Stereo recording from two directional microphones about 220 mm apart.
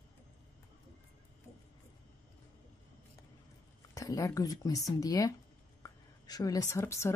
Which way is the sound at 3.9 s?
15° left (ahead or behind).